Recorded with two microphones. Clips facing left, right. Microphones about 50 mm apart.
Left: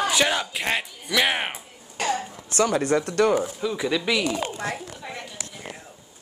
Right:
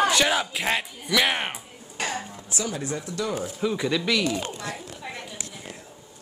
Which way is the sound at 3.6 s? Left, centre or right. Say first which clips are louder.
Even; centre.